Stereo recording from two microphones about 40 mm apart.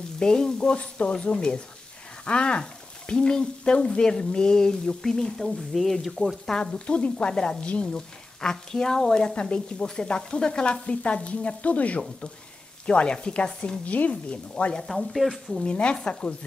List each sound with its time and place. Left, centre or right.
0.2 s a woman's voice: centre
0.7 s speech: left
1.2 s a woman's voice: left
5.4 s speech: centre
6.9 s a woman's voice: left
12.8 s a woman's voice: left
13.8 s speech: left
14.9 s speech: centre
15.6 s a woman's voice: left